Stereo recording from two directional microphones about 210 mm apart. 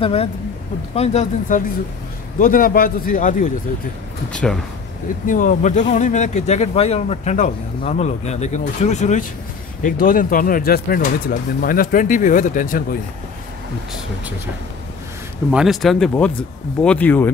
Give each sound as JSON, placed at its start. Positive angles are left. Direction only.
{"t": 0.0, "sound": "speech", "side_deg": 30}
{"t": 2.3, "sound": "speech", "side_deg": 40}
{"t": 4.3, "sound": "speech", "side_deg": 5}
{"t": 5.2, "sound": "speech", "side_deg": 40}
{"t": 15.5, "sound": "speech", "side_deg": 0}